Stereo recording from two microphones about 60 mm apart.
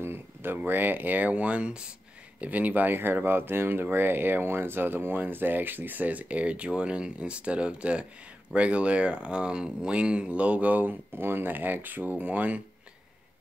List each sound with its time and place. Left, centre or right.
0.0 s speech: right; by 1.9 s centre
2.4 s speech: right